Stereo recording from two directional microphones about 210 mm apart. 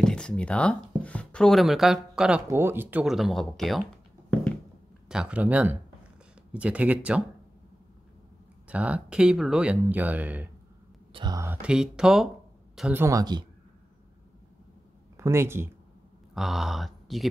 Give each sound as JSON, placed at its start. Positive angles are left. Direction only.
{"t": 0.0, "sound": "speech", "side_deg": 5}
{"t": 8.6, "sound": "speech", "side_deg": -5}
{"t": 11.6, "sound": "speech", "side_deg": -5}
{"t": 15.1, "sound": "speech", "side_deg": -10}
{"t": 16.3, "sound": "speech", "side_deg": 0}